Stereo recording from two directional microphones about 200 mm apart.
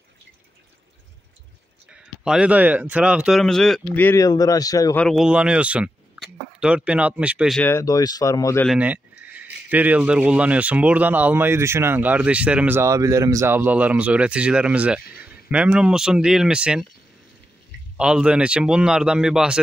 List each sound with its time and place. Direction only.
1.9 s speech: 5° right (ahead or behind); by 4.9 s 20° left (ahead or behind)
4.9 s speech: centre (ahead or behind)
7.6 s speech: 15° left (ahead or behind)
8.6 s speech: 5° right (ahead or behind)
17.9 s speech: 5° right (ahead or behind)